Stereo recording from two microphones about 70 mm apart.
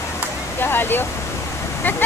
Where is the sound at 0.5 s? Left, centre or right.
Left.